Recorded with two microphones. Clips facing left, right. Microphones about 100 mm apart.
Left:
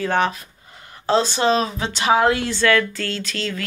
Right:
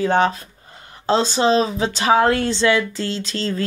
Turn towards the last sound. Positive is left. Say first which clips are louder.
# right 3 dB
turn(degrees=-30)  # may be behind; listen again after turning